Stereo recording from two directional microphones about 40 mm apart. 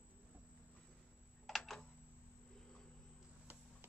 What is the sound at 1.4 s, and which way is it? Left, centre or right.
Computer keyboard, centre.